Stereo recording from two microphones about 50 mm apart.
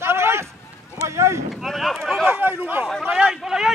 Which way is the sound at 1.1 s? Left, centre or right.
Right.